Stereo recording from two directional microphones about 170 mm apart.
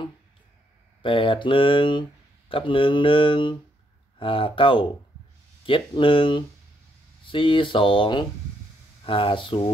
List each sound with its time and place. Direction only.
1.0 s speech: 30° left (ahead or behind)